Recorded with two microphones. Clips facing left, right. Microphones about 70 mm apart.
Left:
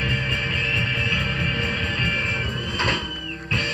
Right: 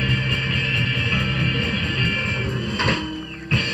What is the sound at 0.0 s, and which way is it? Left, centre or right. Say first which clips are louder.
Music: right 1 dB; centre.